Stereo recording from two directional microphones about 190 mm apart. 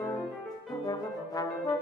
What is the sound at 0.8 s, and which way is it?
Brass instrument, 20° left (ahead or behind).